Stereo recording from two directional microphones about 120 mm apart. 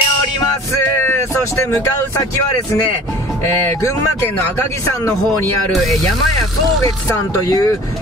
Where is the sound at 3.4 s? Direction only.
20° left (ahead or behind).